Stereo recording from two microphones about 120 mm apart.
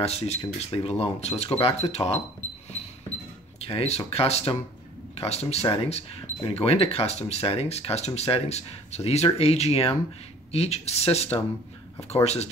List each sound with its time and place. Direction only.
0.0 s speech: 60° left (ahead or behind)
3.6 s speech: 60° left (ahead or behind)